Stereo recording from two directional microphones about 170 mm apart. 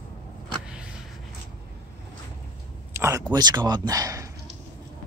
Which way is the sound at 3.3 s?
25° right (ahead or behind).